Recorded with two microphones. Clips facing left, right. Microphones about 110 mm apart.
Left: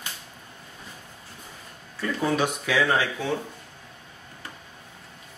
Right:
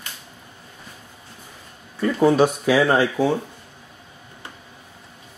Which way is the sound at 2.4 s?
35° right (ahead or behind).